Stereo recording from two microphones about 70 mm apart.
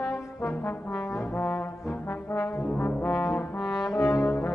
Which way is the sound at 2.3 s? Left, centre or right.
Left.